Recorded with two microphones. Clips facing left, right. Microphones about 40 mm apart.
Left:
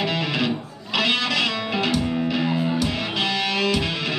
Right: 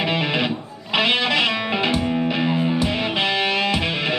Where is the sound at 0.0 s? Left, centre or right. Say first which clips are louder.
Right 2 dB; right.